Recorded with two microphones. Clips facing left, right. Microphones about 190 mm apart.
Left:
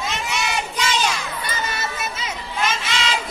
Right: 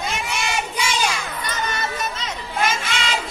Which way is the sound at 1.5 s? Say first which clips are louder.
Right 2 dB; 10° left (ahead or behind).